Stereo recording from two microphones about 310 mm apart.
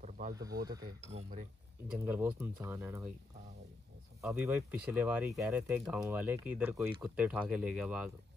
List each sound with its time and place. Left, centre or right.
0.4 s speech: centre
1.1 s speech: right
2.0 s speech: centre
4.2 s speech: centre